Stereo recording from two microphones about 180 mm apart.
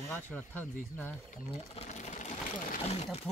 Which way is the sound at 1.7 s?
40° left (ahead or behind).